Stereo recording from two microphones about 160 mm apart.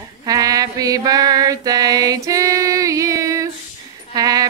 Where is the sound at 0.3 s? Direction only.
20° right (ahead or behind).